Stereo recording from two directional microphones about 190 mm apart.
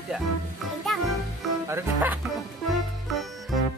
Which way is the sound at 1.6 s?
10° right (ahead or behind).